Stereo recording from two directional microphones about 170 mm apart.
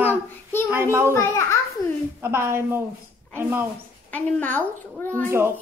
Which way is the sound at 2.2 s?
15° right (ahead or behind).